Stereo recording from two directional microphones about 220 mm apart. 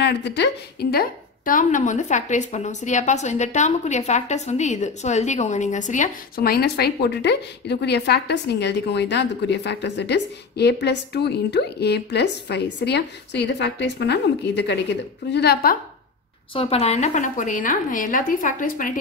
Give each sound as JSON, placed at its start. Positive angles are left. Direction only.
{"t": 0.0, "sound": "a woman's voice", "side_deg": 50}
{"t": 16.5, "sound": "a woman's voice", "side_deg": 25}